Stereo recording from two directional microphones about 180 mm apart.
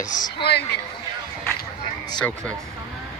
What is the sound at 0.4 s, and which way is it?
Speech, 65° left (ahead or behind).